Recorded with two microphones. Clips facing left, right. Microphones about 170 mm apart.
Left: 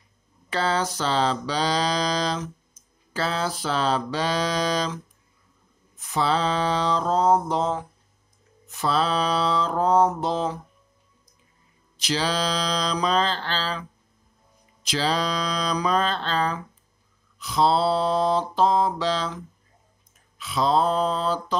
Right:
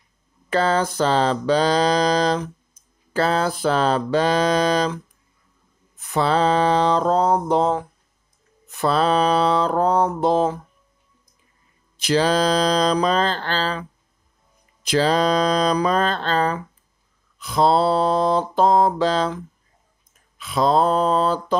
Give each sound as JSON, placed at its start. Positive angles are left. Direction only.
{"t": 0.5, "sound": "mantra", "side_deg": -50}
{"t": 6.0, "sound": "mantra", "side_deg": -55}
{"t": 12.0, "sound": "mantra", "side_deg": -55}
{"t": 14.9, "sound": "mantra", "side_deg": -50}